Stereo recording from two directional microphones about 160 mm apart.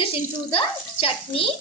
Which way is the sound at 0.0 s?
35° left (ahead or behind).